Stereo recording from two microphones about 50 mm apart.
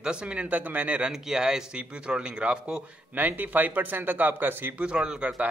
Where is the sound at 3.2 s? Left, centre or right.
Right.